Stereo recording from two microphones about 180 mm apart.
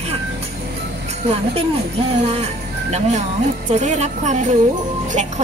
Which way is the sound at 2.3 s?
35° right (ahead or behind).